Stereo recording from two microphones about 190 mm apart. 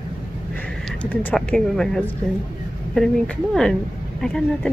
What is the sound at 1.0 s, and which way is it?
Speech, 5° left (ahead or behind).